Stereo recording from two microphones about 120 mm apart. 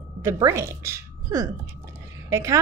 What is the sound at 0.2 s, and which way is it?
A woman's voice, 25° right (ahead or behind).